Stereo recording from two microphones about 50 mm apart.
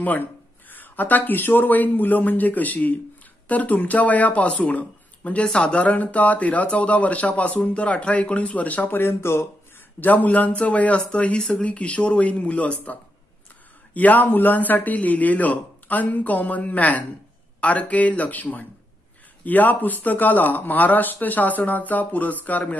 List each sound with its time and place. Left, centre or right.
0.0 s speech: left
5.5 s speech: centre
5.8 s speech: left
8.9 s speech: left
9.9 s speech: left